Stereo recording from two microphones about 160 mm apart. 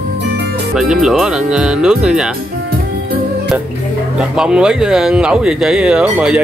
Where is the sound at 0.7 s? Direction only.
Centre (ahead or behind).